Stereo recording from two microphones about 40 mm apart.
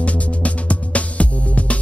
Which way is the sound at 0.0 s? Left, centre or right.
Left.